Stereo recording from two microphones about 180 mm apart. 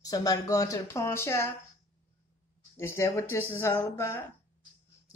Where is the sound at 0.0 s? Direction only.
20° left (ahead or behind).